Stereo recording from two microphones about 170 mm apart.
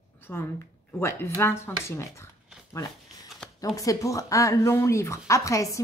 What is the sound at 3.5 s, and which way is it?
Speech, 20° left (ahead or behind).